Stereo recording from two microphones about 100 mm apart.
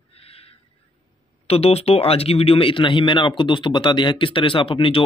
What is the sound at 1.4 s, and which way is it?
Speech, 85° left.